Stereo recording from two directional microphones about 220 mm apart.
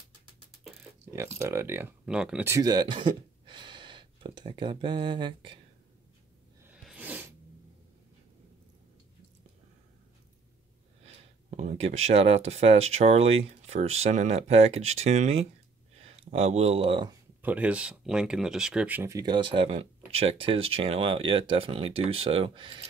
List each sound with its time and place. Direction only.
1.4 s speech: 10° right (ahead or behind)
6.7 s a sound: 5° right (ahead or behind)
11.1 s speech: 30° right (ahead or behind)
17.4 s speech: 5° right (ahead or behind); by 22.8 s 20° right (ahead or behind)